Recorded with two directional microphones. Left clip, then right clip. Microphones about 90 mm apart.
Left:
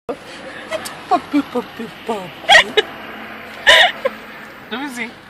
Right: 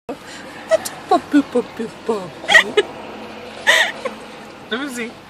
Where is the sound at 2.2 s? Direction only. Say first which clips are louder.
Left 3 dB; 10° right (ahead or behind).